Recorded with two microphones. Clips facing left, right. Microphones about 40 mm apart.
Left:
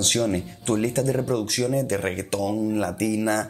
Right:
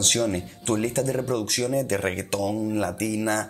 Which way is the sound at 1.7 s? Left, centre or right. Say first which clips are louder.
Even; right.